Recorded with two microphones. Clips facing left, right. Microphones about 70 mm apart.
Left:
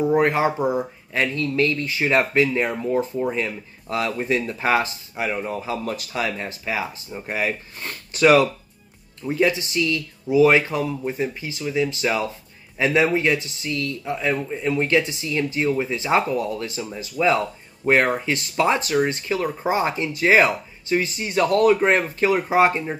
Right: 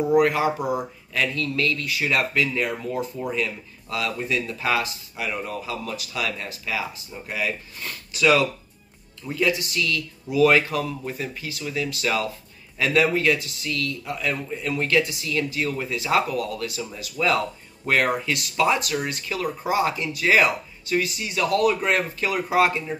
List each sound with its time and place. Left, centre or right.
0.1 s speech: left
5.9 s speech: left
9.2 s speech: left
21.3 s speech: left